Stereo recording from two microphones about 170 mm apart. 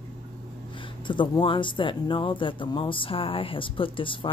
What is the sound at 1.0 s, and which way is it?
Speech, 30° left (ahead or behind).